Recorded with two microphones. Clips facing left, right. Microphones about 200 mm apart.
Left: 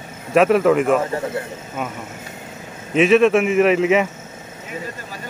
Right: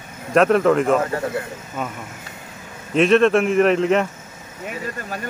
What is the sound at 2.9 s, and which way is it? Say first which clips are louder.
Speech: left 1 dB; 5° left (ahead or behind).